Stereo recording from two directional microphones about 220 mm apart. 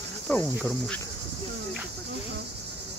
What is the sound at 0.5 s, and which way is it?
Cricket, centre (ahead or behind).